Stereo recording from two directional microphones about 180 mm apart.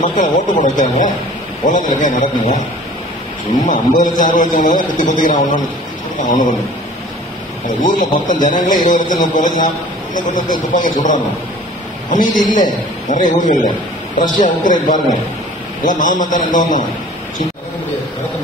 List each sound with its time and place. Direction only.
0.0 s a man's voice: 45° left (ahead or behind)
3.6 s a man's voice: 45° left (ahead or behind)
7.6 s a man's voice: 45° left (ahead or behind)